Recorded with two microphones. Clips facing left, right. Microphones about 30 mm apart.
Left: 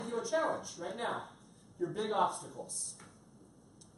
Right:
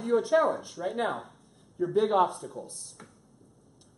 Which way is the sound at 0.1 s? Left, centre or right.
Right.